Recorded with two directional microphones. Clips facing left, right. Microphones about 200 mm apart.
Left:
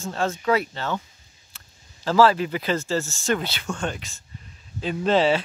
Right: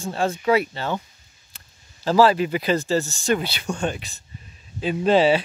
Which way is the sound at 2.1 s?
15° right (ahead or behind).